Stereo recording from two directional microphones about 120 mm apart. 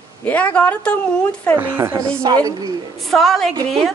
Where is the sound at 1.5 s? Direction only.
15° right (ahead or behind).